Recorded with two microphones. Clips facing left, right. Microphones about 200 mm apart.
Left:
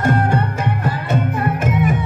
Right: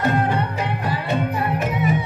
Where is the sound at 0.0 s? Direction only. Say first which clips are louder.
Left 3 dB; 45° left (ahead or behind).